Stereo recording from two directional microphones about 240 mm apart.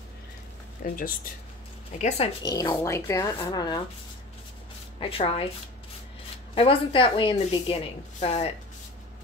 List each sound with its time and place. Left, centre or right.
0.8 s a woman's voice: left
2.4 s speech: centre
5.0 s a woman's voice: left
6.5 s a woman's voice: left